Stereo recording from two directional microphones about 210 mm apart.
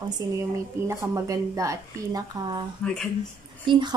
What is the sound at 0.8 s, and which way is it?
Speech, 15° right (ahead or behind).